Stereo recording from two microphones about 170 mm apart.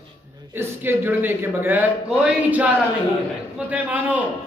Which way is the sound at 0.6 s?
10° right (ahead or behind).